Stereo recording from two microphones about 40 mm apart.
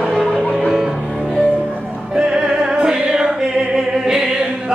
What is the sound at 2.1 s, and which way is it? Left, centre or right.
Choir, centre.